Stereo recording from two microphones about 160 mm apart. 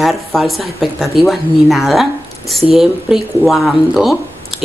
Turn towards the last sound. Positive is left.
turn(degrees=0)  # may be behind; listen again after turning